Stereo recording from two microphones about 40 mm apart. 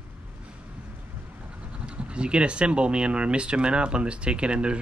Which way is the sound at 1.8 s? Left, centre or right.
Right.